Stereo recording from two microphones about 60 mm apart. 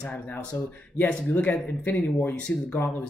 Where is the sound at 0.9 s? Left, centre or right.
Left.